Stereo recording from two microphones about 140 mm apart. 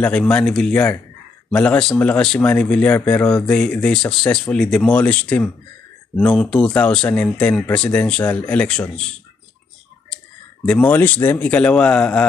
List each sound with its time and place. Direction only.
0.0 s speech: 5° left (ahead or behind)